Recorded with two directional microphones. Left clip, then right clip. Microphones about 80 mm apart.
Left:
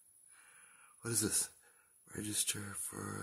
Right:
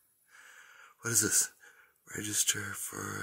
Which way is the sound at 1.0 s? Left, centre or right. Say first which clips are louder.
Right 8 dB; centre.